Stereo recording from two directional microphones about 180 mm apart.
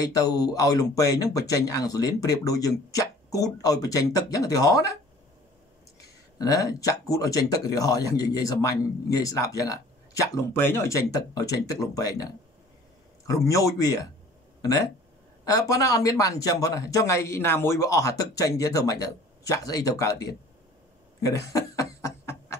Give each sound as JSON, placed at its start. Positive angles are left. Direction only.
{"t": 0.1, "sound": "speech", "side_deg": 20}
{"t": 6.3, "sound": "speech", "side_deg": 20}
{"t": 15.4, "sound": "speech", "side_deg": 20}
{"t": 21.2, "sound": "chuckle", "side_deg": 20}